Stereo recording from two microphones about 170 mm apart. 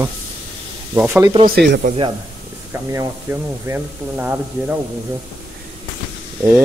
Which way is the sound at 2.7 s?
15° right (ahead or behind).